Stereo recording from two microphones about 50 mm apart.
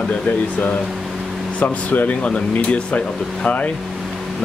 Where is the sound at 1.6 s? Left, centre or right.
Left.